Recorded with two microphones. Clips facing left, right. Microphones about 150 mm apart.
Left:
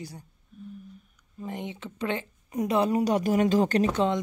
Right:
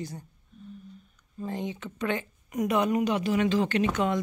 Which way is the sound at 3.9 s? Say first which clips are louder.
Left 2 dB; 25° left (ahead or behind).